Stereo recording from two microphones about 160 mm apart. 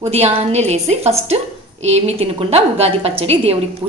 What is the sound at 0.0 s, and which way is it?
A woman's voice, 40° right (ahead or behind).